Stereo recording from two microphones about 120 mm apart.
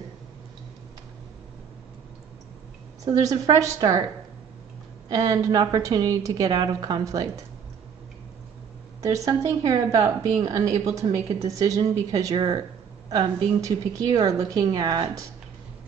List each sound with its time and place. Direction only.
3.1 s a woman's voice: 30° right (ahead or behind)
9.0 s a woman's voice: 25° right (ahead or behind)